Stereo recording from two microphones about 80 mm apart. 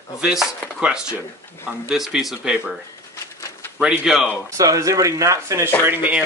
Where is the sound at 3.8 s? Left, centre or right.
Centre.